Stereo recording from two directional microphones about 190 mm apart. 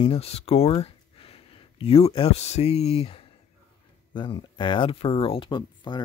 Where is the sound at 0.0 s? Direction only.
30° left (ahead or behind).